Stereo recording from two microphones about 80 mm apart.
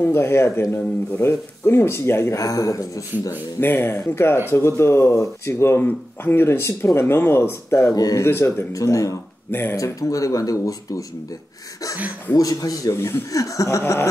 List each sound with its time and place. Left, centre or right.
0.0 s speech: left
2.3 s speech: left
3.5 s speech: left
7.9 s speech: left
8.2 s speech: left
8.7 s speech: left
9.5 s speech: left
9.8 s speech: left
12.4 s speech: left
12.9 s speech: left
13.3 s speech: left